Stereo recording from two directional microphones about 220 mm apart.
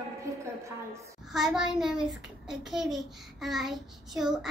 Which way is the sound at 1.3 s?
Centre (ahead or behind).